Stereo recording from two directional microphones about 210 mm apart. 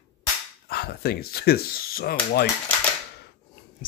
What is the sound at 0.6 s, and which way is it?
Speech, 45° left (ahead or behind).